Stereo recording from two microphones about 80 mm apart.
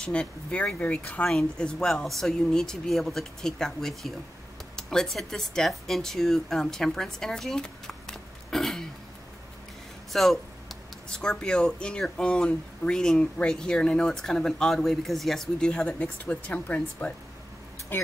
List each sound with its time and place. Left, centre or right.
0.0 s speech: centre
10.1 s speech: centre; by 18.1 s left